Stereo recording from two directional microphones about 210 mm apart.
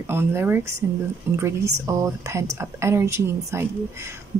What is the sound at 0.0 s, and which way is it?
Speech, 10° right (ahead or behind).